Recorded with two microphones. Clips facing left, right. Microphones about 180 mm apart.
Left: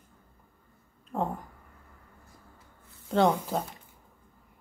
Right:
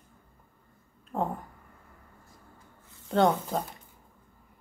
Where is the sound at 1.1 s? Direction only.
Centre (ahead or behind).